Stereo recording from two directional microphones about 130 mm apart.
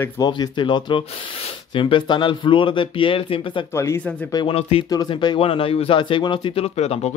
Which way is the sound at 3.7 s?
20° left (ahead or behind).